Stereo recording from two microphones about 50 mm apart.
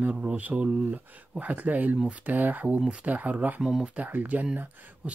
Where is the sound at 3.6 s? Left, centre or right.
Centre.